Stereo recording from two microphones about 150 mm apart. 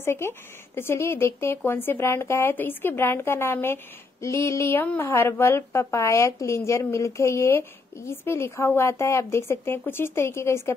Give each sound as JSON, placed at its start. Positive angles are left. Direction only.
{"t": 0.0, "sound": "speech", "side_deg": 15}